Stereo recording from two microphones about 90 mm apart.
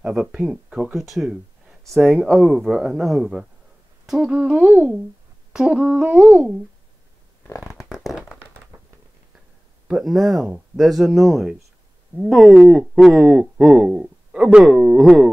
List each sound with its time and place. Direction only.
0.0 s speech: 10° right (ahead or behind); by 2.4 s 10° left (ahead or behind)
2.4 s speech: centre (ahead or behind)
4.4 s speech: 15° right (ahead or behind)
5.5 s speech: 10° right (ahead or behind)
7.4 s scratch: 30° left (ahead or behind)
7.7 s a sound: centre (ahead or behind)
9.8 s speech: centre (ahead or behind)